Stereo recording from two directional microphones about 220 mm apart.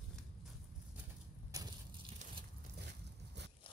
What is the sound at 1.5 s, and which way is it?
Crushing, 15° right (ahead or behind).